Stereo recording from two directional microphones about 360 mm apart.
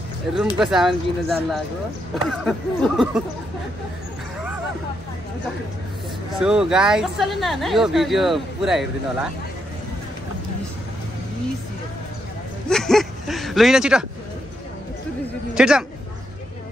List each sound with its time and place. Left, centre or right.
0.6 s speech: centre
6.4 s speech: centre
12.6 s a sound: centre
15.5 s speech: centre